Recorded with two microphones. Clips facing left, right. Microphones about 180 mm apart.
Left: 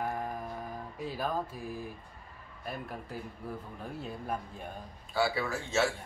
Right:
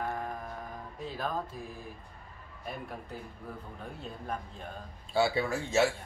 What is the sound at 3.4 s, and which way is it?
Speech, 10° left (ahead or behind).